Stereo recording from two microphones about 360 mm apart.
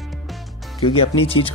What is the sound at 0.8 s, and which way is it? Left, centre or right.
Speech, centre.